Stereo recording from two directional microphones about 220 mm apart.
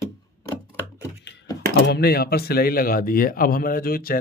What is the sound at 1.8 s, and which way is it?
Speech, 45° left (ahead or behind).